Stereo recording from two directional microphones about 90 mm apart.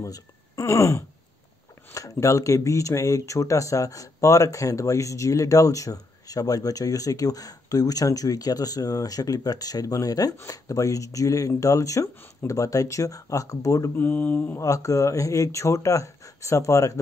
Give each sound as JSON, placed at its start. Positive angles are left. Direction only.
{"t": 0.0, "sound": "speech", "side_deg": 35}
{"t": 13.9, "sound": "mantra", "side_deg": 20}
{"t": 14.6, "sound": "speech", "side_deg": 40}